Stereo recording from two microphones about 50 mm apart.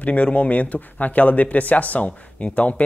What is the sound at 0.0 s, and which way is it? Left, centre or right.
Speech, left.